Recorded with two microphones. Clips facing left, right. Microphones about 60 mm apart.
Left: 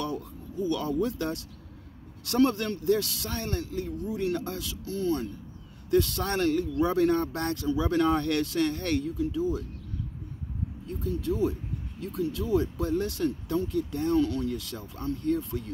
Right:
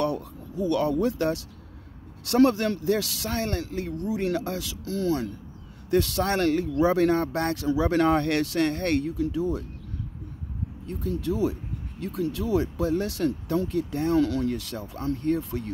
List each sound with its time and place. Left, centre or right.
0.0 s speech: right
3.3 s speech: right
5.9 s speech: right
10.9 s speech: right
12.0 s speech: right